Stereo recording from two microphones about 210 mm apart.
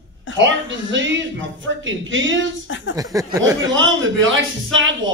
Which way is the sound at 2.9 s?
15° right (ahead or behind).